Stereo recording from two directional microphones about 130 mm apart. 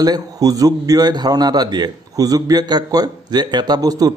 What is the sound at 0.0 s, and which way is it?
A man's voice, 30° right (ahead or behind).